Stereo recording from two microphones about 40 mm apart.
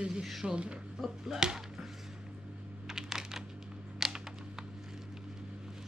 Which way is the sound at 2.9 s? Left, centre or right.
Centre.